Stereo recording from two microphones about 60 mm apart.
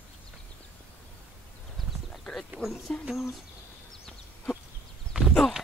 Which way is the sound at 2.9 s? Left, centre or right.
Centre.